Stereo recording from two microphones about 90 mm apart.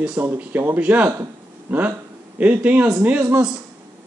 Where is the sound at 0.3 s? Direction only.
25° right (ahead or behind).